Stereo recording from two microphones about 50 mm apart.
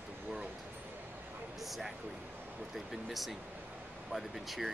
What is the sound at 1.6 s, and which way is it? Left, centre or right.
Speech, centre.